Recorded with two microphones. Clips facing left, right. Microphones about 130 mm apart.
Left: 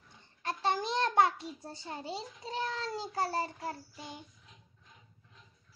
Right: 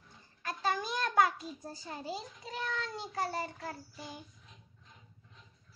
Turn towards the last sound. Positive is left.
turn(degrees=35)  # may be behind; listen again after turning